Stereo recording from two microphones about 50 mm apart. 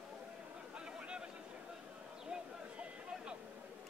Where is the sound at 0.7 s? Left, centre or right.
Centre.